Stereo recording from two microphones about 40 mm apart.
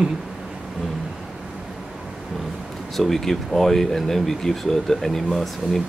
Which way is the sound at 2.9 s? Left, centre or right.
Centre.